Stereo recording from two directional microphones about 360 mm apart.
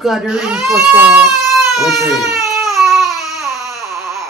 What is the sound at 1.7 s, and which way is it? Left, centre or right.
Baby cry, centre.